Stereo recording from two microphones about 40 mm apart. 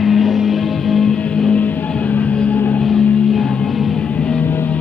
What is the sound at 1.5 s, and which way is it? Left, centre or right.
Music, left.